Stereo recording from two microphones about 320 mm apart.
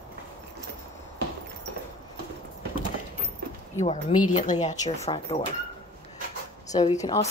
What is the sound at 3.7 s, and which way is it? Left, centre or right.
Speech, left.